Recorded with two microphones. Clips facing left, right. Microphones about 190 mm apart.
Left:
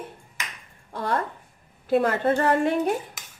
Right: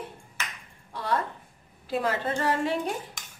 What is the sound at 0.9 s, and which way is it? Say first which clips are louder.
A woman's voice: left 2 dB; 50° left (ahead or behind).